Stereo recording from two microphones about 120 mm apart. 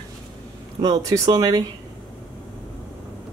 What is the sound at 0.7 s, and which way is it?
Speech, 30° right (ahead or behind).